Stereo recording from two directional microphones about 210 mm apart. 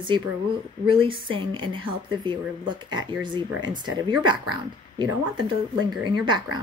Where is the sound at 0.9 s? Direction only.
25° right (ahead or behind).